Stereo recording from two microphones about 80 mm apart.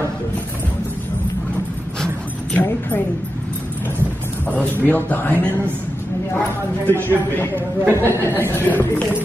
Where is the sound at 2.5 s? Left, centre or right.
Left.